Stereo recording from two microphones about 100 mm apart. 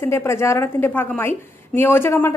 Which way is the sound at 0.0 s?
25° left (ahead or behind).